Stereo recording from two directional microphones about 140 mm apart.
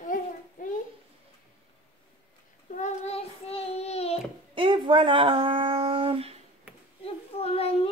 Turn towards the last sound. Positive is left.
turn(degrees=45)  # may be behind; listen again after turning